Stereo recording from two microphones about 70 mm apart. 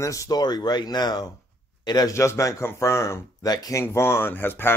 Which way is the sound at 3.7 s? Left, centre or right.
Left.